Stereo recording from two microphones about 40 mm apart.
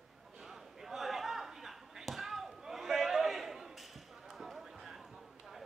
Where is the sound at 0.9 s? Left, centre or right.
Centre.